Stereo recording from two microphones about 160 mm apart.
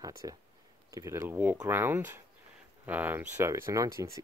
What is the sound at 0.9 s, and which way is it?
Speech, 15° right (ahead or behind).